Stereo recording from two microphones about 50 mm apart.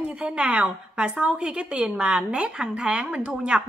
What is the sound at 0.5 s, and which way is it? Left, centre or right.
A woman's voice, right.